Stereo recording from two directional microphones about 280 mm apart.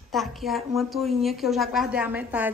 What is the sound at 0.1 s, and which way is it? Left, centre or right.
A woman's voice, centre.